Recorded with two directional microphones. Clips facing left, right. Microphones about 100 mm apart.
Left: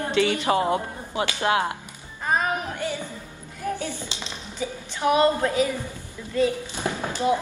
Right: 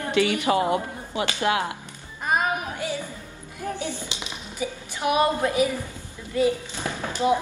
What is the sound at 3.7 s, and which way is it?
Speech, 20° right (ahead or behind).